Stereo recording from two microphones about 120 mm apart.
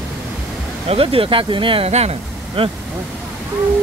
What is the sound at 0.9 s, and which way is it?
Speech, 50° right (ahead or behind).